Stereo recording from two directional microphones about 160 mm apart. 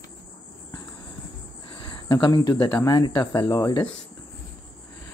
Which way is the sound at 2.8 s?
25° left (ahead or behind).